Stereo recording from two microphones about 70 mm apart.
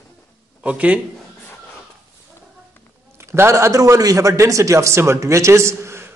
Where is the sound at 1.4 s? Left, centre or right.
Left.